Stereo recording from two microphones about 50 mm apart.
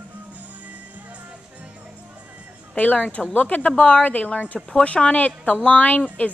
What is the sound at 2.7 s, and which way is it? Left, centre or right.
Speech, left.